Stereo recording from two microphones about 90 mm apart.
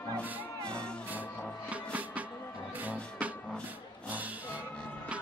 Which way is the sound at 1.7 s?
15° right (ahead or behind).